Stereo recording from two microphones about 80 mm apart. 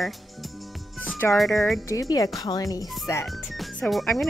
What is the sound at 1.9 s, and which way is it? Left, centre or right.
Speech, left.